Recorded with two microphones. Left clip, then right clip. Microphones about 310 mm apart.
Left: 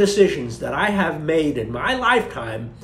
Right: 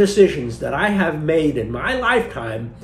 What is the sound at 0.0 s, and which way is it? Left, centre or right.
Speech, centre.